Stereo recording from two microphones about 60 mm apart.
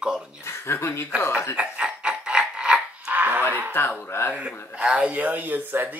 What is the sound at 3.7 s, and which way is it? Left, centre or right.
Speech, left.